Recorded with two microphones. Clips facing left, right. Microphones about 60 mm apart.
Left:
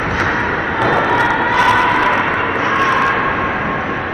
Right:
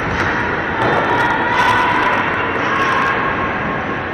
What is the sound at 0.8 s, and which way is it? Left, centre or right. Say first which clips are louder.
Vehicle: left 1 dB; centre.